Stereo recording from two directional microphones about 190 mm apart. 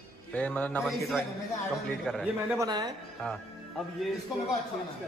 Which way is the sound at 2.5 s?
20° right (ahead or behind).